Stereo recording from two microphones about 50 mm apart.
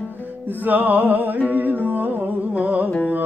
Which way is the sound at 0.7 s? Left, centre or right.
Right.